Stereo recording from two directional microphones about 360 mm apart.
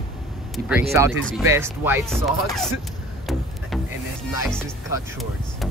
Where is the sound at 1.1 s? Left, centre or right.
Right.